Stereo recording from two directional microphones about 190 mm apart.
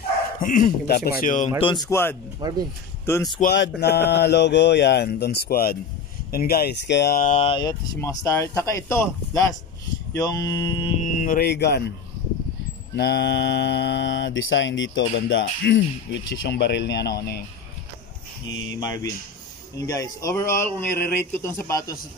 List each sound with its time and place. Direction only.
0.4 s speech: 45° left (ahead or behind)
1.2 s speech: 40° left (ahead or behind)
1.6 s speech: 25° left (ahead or behind)
2.4 s speech: 20° right (ahead or behind)
3.1 s speech: 15° left (ahead or behind)
3.5 s speech: 65° left (ahead or behind)
7.2 s speech: 35° left (ahead or behind); by 11.8 s 60° left (ahead or behind)
12.9 s mantra: 60° left (ahead or behind)
18.8 s speech: 20° left (ahead or behind)